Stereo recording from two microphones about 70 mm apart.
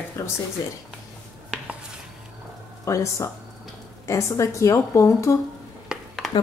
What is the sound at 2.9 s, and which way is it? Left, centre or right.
A woman's voice, left.